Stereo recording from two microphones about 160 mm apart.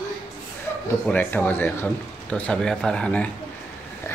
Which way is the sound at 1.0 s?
10° left (ahead or behind).